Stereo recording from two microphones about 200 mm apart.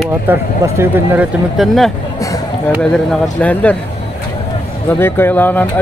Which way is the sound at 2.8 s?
5° left (ahead or behind).